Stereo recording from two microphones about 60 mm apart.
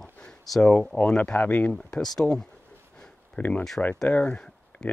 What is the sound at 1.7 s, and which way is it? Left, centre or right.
Speech, centre.